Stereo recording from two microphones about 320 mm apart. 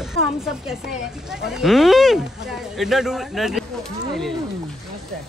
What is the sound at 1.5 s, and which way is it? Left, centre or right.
Speech, centre.